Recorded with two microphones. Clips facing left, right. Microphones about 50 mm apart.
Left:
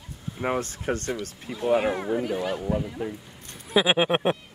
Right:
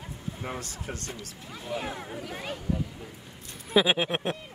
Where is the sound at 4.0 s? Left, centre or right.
Left.